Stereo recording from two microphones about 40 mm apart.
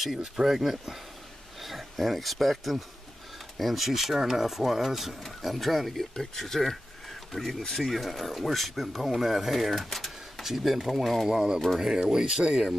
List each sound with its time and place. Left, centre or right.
0.2 s speech: centre
9.9 s a sound: centre
10.4 s speech: centre
11.2 s speech: centre